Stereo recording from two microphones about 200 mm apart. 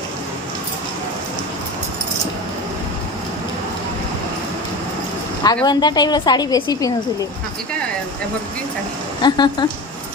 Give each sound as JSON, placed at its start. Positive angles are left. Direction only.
{"t": 5.4, "sound": "a woman's voice", "side_deg": 20}
{"t": 9.2, "sound": "a woman's voice", "side_deg": 20}